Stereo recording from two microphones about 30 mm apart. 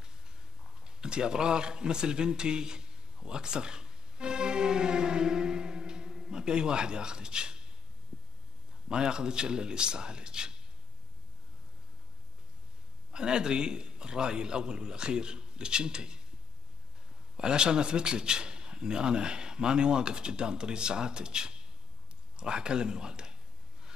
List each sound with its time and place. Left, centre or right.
0.7 s a sound: right
8.8 s a man's voice: right
13.1 s a man's voice: right
17.4 s a man's voice: right